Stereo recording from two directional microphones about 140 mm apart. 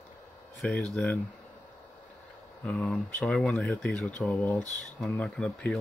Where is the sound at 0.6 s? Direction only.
5° left (ahead or behind).